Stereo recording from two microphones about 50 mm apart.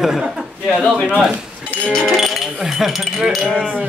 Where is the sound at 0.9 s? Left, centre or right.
Right.